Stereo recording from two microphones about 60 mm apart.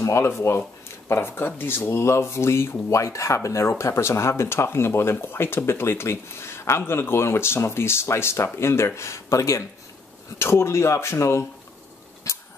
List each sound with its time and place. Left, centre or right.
0.0 s speech: left
1.9 s speech: left
2.9 s speech: left
10.4 s speech: left
12.2 s a sound: left